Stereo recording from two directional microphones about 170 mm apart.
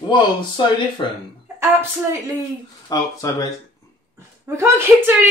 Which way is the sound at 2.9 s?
20° left (ahead or behind).